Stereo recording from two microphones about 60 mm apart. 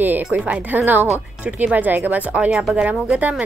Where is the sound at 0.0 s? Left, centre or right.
Right.